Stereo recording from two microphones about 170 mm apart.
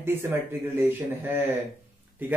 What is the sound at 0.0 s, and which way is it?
Speech, 15° right (ahead or behind).